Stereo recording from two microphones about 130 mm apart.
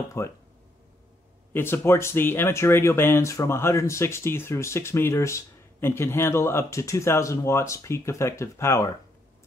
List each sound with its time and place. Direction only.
0.2 s speech: 20° left (ahead or behind)
1.5 s speech: 20° left (ahead or behind)